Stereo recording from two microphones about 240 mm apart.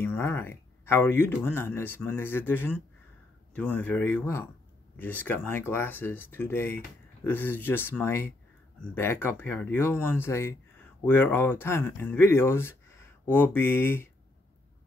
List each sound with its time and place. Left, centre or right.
0.0 s speech: centre